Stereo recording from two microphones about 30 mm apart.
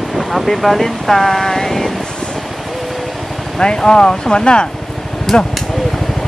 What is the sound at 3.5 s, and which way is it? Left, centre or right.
Speech, left.